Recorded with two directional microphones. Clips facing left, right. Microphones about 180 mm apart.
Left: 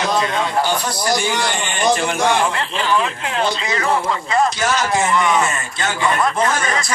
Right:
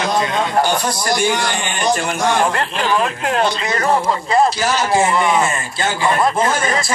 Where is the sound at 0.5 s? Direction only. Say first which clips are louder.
Right 2 dB; 45° right (ahead or behind).